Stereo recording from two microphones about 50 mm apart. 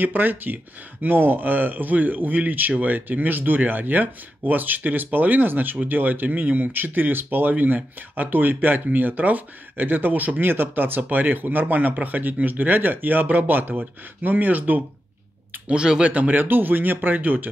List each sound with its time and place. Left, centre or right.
0.0 s speech: right
15.7 s speech: centre
16.1 s speech: right